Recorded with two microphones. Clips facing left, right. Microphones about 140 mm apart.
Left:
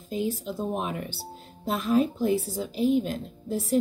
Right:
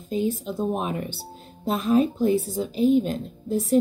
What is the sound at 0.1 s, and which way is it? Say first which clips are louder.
Speech: right 4 dB; 20° right (ahead or behind).